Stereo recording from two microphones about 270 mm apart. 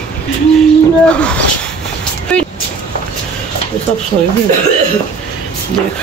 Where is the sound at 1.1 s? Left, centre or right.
Centre.